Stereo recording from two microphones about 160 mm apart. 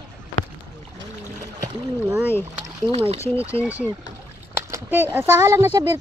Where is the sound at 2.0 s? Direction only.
10° right (ahead or behind).